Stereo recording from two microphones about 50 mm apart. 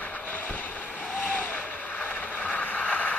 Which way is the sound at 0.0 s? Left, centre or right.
Left.